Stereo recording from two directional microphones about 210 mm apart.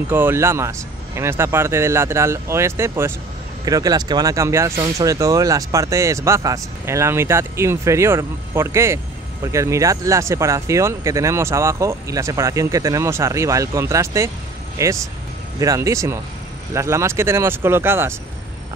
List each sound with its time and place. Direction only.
0.1 s speech: 10° right (ahead or behind)